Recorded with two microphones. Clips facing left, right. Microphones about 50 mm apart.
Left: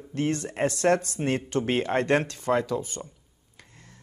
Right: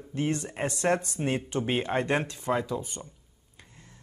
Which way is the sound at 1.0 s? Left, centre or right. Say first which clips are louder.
Left 2 dB; left.